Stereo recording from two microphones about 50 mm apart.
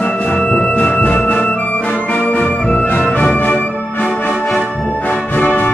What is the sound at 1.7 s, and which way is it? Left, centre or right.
Music, left.